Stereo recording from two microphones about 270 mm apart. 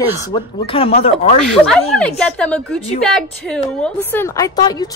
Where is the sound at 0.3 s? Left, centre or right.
Centre.